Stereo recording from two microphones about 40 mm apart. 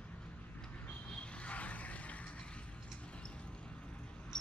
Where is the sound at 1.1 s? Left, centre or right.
Left.